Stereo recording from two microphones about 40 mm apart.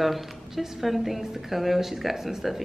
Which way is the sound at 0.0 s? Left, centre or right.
Centre.